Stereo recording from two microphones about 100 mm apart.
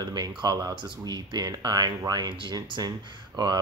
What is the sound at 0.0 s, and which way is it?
Speech, 45° right (ahead or behind).